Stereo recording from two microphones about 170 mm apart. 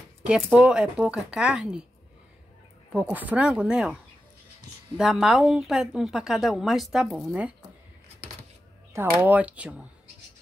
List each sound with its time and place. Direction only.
0.3 s a woman's voice: 5° right (ahead or behind)
2.9 s a woman's voice: 10° right (ahead or behind)
9.2 s speech: 10° right (ahead or behind)